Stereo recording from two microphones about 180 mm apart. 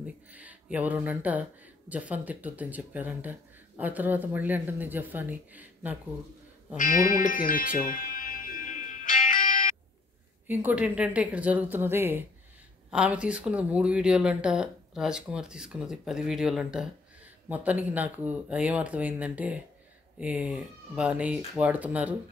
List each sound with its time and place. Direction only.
0.0 s speech: 10° right (ahead or behind)
6.8 s music: 45° left (ahead or behind)
10.5 s speech: 10° right (ahead or behind)